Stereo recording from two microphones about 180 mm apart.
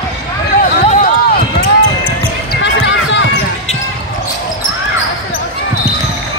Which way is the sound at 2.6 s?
90° left.